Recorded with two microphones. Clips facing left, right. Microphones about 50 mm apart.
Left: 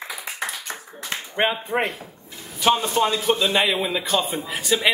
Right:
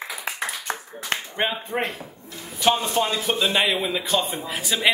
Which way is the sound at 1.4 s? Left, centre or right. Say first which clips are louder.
Left 5 dB; centre.